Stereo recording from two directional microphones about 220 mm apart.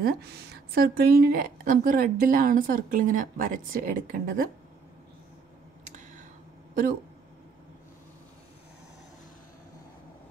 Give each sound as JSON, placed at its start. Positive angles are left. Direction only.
{"t": 0.0, "sound": "a woman's voice", "side_deg": -45}